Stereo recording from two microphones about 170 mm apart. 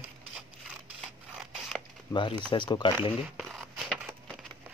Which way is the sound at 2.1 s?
30° left (ahead or behind).